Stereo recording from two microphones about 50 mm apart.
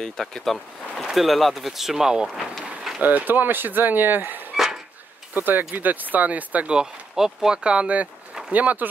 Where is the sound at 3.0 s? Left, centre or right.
Right.